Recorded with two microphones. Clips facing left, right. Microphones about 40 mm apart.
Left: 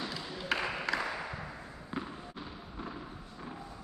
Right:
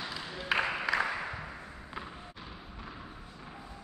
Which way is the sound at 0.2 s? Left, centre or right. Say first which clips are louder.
Right 5 dB; centre.